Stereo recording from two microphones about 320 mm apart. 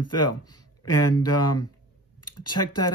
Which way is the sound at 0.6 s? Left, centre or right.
Left.